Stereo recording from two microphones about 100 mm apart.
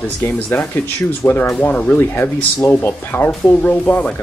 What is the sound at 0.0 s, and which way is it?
Speech, 25° left (ahead or behind).